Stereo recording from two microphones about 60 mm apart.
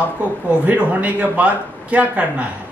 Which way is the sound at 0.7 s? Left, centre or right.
Right.